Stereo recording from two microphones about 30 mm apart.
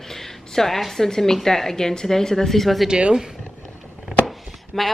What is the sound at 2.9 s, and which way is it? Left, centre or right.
Speech, right.